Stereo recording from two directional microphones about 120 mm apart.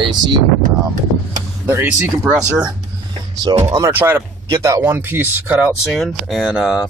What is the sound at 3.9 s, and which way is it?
Speech, 20° right (ahead or behind).